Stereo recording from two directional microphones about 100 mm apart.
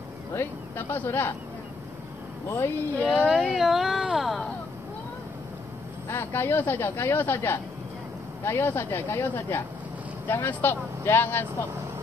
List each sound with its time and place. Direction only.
0.3 s speech: 20° left (ahead or behind)
2.4 s speech: 25° left (ahead or behind)
2.9 s speech: 15° left (ahead or behind)
3.3 s speech: centre (ahead or behind)
6.0 s speech: 25° left (ahead or behind)